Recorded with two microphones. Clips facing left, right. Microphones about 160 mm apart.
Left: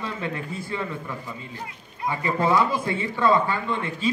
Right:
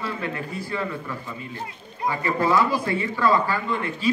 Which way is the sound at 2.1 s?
20° left (ahead or behind).